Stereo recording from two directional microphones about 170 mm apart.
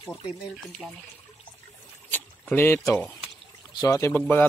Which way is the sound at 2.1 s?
10° left (ahead or behind).